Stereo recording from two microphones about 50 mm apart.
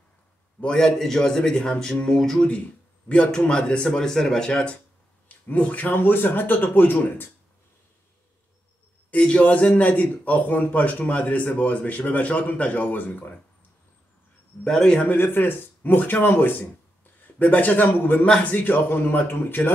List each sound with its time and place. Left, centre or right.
0.7 s a man's voice: centre
5.5 s speech: left
5.9 s speech: left
9.1 s a man's voice: left
14.6 s a man's voice: centre
15.0 s speech: left
18.2 s speech: left